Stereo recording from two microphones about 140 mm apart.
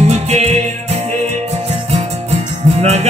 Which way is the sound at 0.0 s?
50° right (ahead or behind).